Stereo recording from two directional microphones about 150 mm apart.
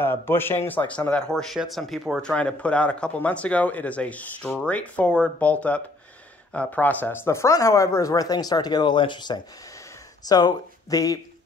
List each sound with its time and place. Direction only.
0.0 s speech: 15° left (ahead or behind)